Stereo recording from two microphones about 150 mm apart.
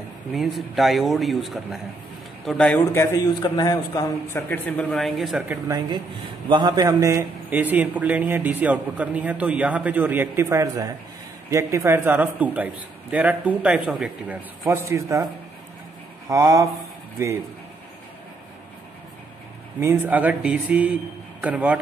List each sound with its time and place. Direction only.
0.3 s speech: centre (ahead or behind); by 3.2 s 15° left (ahead or behind)
3.4 s speech: 30° left (ahead or behind); by 5.4 s centre (ahead or behind)
6.5 s a man's voice: 30° right (ahead or behind); by 14.4 s 5° right (ahead or behind)
14.6 s a man's voice: 20° right (ahead or behind)
16.3 s a man's voice: 20° right (ahead or behind)
19.8 s a man's voice: 15° right (ahead or behind)